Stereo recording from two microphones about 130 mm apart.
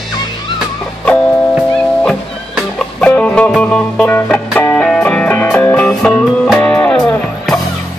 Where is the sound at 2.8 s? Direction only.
10° left (ahead or behind).